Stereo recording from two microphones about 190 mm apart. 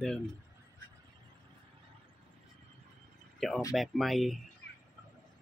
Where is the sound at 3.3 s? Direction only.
Centre (ahead or behind).